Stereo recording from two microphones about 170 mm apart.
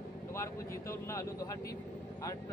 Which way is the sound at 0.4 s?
15° left (ahead or behind).